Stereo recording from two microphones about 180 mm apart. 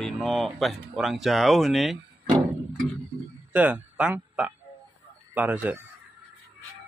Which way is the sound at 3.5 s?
5° right (ahead or behind).